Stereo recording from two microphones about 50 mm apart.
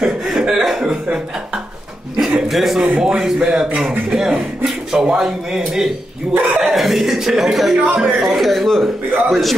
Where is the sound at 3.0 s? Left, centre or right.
Centre.